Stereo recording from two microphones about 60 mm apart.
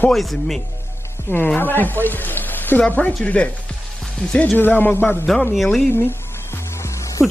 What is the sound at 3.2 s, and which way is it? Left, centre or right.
Speech, centre.